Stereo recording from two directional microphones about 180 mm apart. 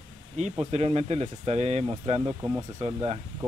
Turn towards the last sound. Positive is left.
turn(degrees=-35)  # may be behind; listen again after turning